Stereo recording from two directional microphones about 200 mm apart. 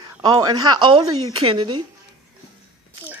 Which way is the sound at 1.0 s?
90° right.